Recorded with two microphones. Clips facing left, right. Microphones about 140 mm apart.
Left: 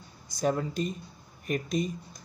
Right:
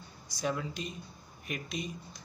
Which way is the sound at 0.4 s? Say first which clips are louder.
Left 6 dB; 45° left (ahead or behind).